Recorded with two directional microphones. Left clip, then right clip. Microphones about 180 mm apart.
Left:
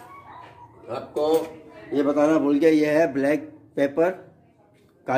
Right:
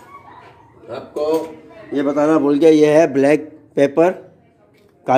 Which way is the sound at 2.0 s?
25° right (ahead or behind).